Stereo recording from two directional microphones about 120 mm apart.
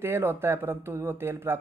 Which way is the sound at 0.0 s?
20° right (ahead or behind).